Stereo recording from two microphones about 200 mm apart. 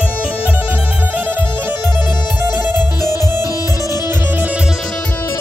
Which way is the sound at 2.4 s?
10° right (ahead or behind).